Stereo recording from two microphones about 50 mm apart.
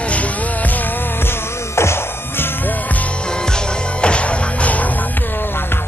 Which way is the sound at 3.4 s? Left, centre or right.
Centre.